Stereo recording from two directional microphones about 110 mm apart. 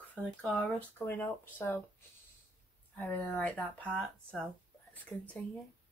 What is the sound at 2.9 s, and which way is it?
Speech, 15° left (ahead or behind).